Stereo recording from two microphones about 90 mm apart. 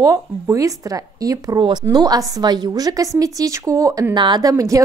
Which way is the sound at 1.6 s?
50° right (ahead or behind).